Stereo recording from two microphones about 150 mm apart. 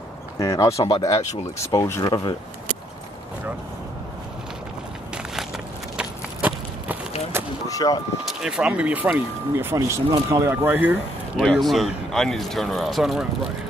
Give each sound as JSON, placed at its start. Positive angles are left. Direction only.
{"t": 0.4, "sound": "speech", "side_deg": 20}
{"t": 5.9, "sound": "run", "side_deg": -10}
{"t": 7.6, "sound": "speech", "side_deg": 25}
{"t": 8.3, "sound": "speech", "side_deg": -5}
{"t": 11.3, "sound": "speech", "side_deg": 0}